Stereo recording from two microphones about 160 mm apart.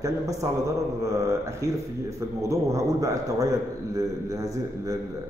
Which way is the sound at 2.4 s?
20° right (ahead or behind).